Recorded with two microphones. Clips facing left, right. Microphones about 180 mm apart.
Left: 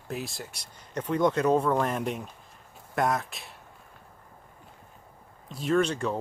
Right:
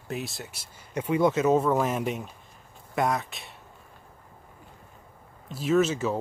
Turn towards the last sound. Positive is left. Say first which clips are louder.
# right 2 dB
turn(degrees=-5)  # may be behind; listen again after turning